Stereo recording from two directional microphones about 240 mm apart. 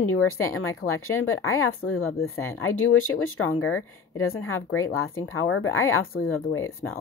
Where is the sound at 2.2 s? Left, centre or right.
Centre.